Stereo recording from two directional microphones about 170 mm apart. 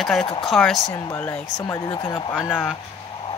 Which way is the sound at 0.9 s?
15° left (ahead or behind).